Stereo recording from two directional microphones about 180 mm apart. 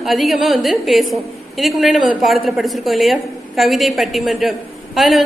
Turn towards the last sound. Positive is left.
turn(degrees=0)  # may be behind; listen again after turning